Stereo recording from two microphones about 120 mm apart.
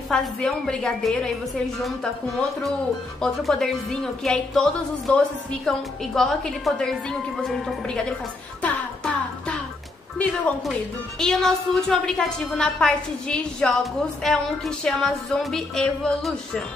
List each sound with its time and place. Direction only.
0.1 s a woman's voice: 5° left (ahead or behind)
3.2 s a woman's voice: centre (ahead or behind)
8.6 s music: 10° left (ahead or behind)
10.7 s a woman's voice: 5° left (ahead or behind)